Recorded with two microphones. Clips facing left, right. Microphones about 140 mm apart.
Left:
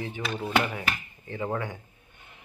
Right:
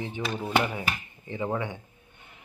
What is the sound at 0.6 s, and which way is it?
Speech, 10° right (ahead or behind).